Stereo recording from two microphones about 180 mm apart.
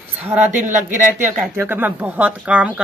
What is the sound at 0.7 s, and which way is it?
Speech, 45° right (ahead or behind).